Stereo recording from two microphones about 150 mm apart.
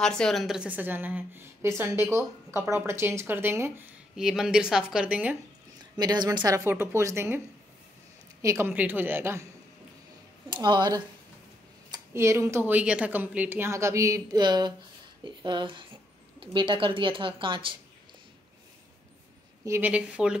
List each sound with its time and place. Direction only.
0.0 s speech: 5° left (ahead or behind); by 3.9 s 15° right (ahead or behind)
4.1 s speech: centre (ahead or behind)
5.9 s a woman's voice: 25° right (ahead or behind)
10.5 s a woman's voice: 30° right (ahead or behind)
11.9 s a woman's voice: 20° right (ahead or behind); by 17.7 s 35° right (ahead or behind)
19.6 s speech: 15° right (ahead or behind)